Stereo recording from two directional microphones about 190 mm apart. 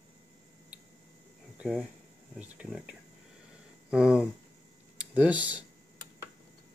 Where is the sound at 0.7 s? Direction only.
5° right (ahead or behind).